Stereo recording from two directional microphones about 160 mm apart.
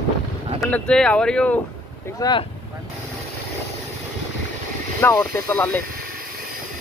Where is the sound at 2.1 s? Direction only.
25° left (ahead or behind).